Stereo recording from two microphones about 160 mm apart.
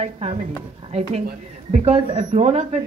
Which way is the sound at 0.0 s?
40° right (ahead or behind).